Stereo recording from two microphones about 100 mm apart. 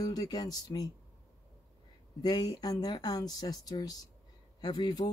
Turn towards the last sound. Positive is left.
turn(degrees=45)  # may be behind; listen again after turning